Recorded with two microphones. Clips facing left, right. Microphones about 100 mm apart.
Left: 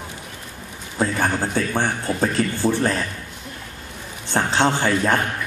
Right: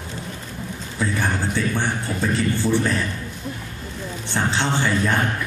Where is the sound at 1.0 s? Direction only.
40° left (ahead or behind).